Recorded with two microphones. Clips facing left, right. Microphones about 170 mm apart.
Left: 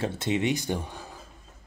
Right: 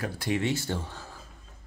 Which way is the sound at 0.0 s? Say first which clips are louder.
Left 2 dB; 25° left (ahead or behind).